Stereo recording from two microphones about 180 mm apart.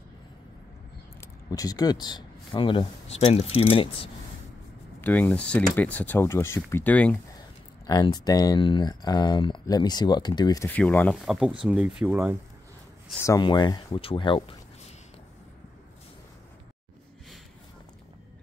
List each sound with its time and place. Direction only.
1.2 s speech: 20° left (ahead or behind)
5.0 s speech: 10° left (ahead or behind)
7.8 s speech: 20° left (ahead or behind)
10.7 s speech: 10° left (ahead or behind); by 12.4 s 10° right (ahead or behind)
13.2 s speech: 20° left (ahead or behind)